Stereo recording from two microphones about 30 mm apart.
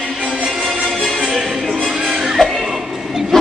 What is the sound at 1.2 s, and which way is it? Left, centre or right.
Music, centre.